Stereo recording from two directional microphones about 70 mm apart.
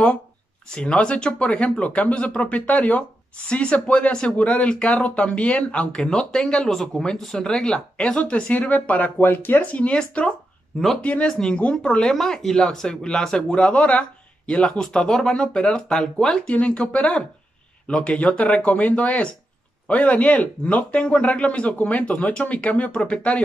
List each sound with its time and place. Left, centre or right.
0.7 s speech: centre
9.6 s a man's voice: centre
11.2 s a man's voice: centre
12.0 s a man's voice: centre